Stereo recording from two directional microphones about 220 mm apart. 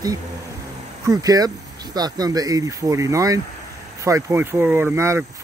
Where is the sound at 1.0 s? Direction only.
15° right (ahead or behind).